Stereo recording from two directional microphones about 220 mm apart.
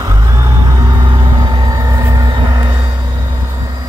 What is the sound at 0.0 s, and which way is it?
Vehicle, 15° right (ahead or behind).